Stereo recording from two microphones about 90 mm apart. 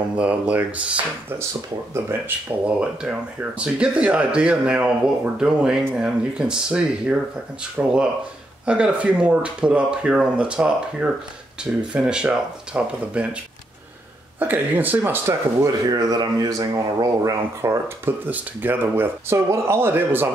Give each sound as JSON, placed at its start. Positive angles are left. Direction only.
{"t": 0.2, "sound": "speech", "side_deg": -15}
{"t": 2.6, "sound": "speech", "side_deg": -10}
{"t": 14.4, "sound": "speech", "side_deg": -20}
{"t": 15.6, "sound": "speech", "side_deg": -45}
{"t": 17.6, "sound": "speech", "side_deg": -25}